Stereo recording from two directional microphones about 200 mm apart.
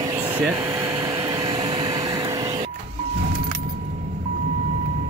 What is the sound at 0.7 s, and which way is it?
Vacuum cleaner, 20° right (ahead or behind).